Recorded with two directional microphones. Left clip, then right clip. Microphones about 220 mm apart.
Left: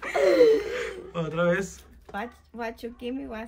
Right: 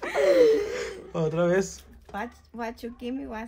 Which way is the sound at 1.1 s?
25° right (ahead or behind).